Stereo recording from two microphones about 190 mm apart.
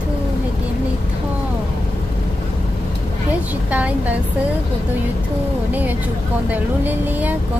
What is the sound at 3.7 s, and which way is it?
Speech, 10° right (ahead or behind).